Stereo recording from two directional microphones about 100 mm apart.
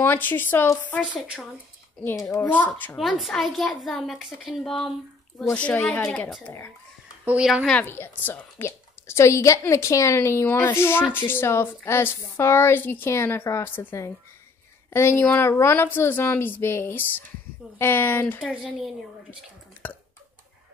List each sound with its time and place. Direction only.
0.0 s a woman's voice: 20° left (ahead or behind)
1.1 s speech: 10° right (ahead or behind)
2.4 s a child's voice: 15° left (ahead or behind)
3.0 s a woman's voice: centre (ahead or behind)
5.5 s a child's voice: 15° left (ahead or behind)
7.8 s a woman's voice: 20° left (ahead or behind)
18.4 s speech: 10° right (ahead or behind)
19.8 s a sound: 15° left (ahead or behind)